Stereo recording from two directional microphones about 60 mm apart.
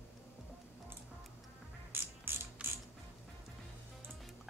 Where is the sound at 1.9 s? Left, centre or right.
Right.